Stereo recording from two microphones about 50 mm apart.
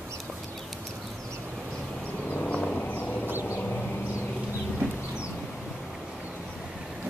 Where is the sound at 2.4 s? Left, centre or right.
Centre.